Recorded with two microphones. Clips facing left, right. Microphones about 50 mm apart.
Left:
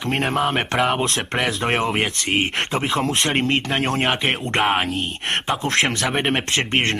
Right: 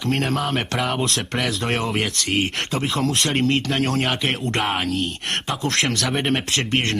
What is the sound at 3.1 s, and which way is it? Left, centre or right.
Speech, centre.